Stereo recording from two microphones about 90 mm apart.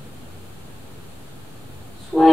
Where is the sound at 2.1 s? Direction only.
10° left (ahead or behind).